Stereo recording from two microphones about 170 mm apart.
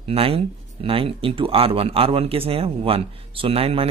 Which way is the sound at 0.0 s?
35° right (ahead or behind).